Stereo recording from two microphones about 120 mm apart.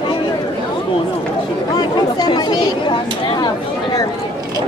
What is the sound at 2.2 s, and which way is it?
Speech, 35° left (ahead or behind).